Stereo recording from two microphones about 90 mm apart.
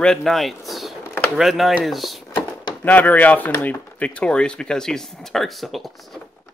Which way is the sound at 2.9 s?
20° left (ahead or behind).